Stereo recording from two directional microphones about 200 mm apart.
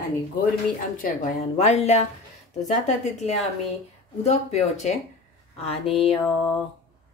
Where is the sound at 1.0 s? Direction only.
40° left (ahead or behind).